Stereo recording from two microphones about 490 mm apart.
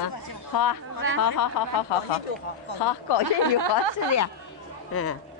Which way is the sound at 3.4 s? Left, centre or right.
Right.